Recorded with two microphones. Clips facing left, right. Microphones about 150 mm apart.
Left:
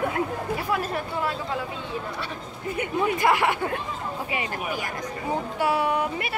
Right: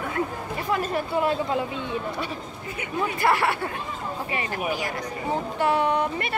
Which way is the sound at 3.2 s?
15° left (ahead or behind).